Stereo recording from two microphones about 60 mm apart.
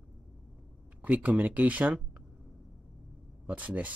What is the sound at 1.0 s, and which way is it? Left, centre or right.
Speech, right.